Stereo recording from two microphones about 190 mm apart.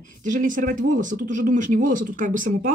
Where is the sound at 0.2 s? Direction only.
45° right (ahead or behind).